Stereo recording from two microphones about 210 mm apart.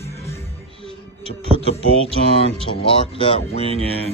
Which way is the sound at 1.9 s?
30° right (ahead or behind).